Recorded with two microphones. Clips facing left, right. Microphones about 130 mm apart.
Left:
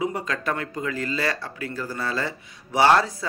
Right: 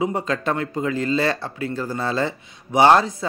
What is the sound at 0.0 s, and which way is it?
Speech, 25° right (ahead or behind).